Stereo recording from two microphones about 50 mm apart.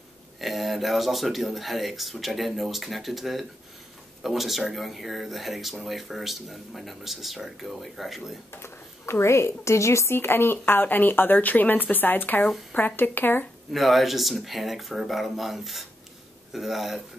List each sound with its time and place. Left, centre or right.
0.4 s speech: centre
8.5 s speech: left
10.1 s speech: left
13.7 s speech: centre